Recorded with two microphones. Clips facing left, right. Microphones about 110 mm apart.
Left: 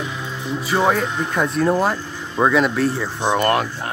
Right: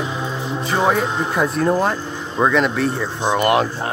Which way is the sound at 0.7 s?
5° right (ahead or behind).